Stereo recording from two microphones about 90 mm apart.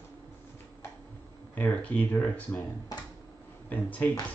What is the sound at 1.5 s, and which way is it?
Speech, 15° left (ahead or behind).